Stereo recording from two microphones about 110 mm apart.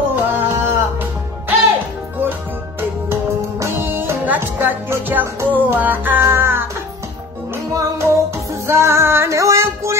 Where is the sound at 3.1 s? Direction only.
25° right (ahead or behind).